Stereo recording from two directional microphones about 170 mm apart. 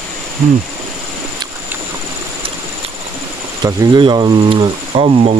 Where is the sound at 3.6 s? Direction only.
25° right (ahead or behind).